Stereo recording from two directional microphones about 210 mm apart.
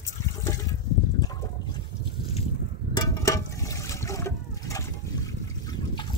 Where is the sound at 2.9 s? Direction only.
15° left (ahead or behind).